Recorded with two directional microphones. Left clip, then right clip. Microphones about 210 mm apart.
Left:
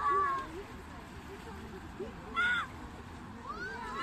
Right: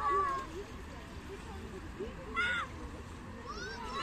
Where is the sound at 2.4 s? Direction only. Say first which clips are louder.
Left 3 dB; 20° left (ahead or behind).